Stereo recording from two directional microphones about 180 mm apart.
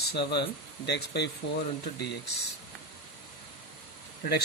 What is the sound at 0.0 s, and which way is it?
Speech, 65° left (ahead or behind).